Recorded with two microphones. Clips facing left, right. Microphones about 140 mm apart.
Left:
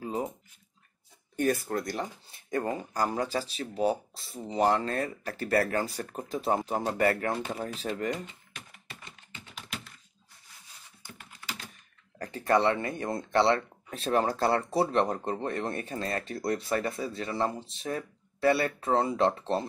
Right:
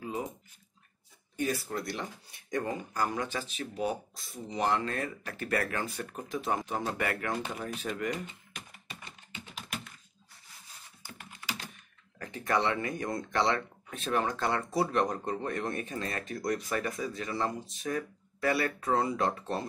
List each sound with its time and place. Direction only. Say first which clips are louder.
0.0 s a sound: left 3 dB; 35° left (ahead or behind)
1.3 s speech: left 5 dB; 50° left (ahead or behind); by 8.1 s 35° left (ahead or behind)
12.2 s speech: left 5 dB; 35° left (ahead or behind)